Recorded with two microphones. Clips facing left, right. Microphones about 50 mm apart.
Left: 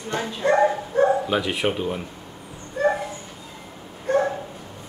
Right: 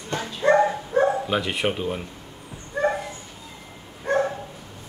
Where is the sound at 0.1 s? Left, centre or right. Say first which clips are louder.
Left 2 dB; left.